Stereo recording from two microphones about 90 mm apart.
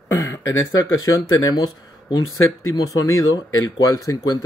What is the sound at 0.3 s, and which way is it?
Speech, 30° left (ahead or behind).